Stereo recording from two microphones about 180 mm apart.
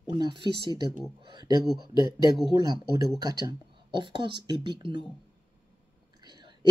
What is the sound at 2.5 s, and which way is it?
Speech, 20° right (ahead or behind).